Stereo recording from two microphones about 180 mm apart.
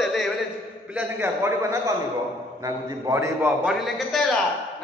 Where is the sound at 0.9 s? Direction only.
15° right (ahead or behind).